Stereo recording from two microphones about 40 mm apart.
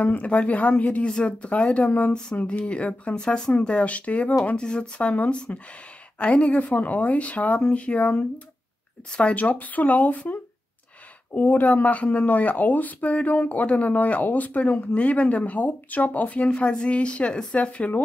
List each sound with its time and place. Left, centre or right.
0.0 s speech: left
1.0 s a woman's voice: left
5.5 s speech: left
6.1 s speech: left
16.4 s a woman's voice: left